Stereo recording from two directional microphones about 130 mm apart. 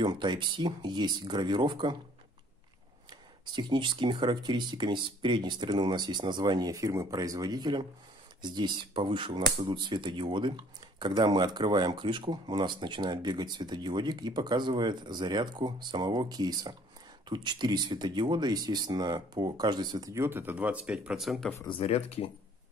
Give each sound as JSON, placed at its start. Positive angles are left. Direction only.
{"t": 0.0, "sound": "speech", "side_deg": -35}
{"t": 3.1, "sound": "speech", "side_deg": -35}
{"t": 21.6, "sound": "speech", "side_deg": 45}